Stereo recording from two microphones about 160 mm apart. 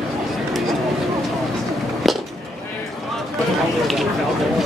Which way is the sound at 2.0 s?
Centre (ahead or behind).